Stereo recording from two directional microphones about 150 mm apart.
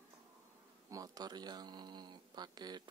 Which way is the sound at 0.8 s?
25° right (ahead or behind).